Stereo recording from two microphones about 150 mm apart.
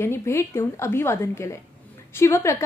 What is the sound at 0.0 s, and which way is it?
A woman's voice, 15° left (ahead or behind).